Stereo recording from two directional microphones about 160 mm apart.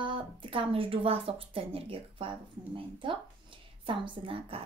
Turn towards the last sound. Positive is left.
turn(degrees=-35)  # may be behind; listen again after turning